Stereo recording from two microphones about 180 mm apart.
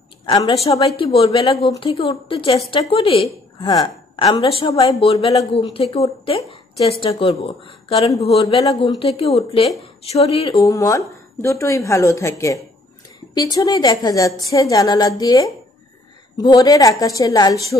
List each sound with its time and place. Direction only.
0.2 s a woman's voice: 20° left (ahead or behind)
10.5 s a woman's voice: 20° left (ahead or behind)